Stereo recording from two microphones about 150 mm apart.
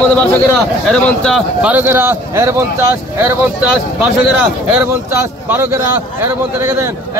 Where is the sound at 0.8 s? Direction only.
5° left (ahead or behind).